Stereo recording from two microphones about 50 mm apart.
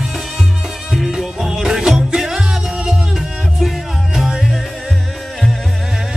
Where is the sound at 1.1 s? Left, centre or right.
Centre.